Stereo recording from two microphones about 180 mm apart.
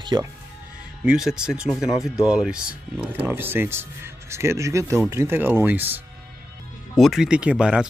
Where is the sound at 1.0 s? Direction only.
5° right (ahead or behind).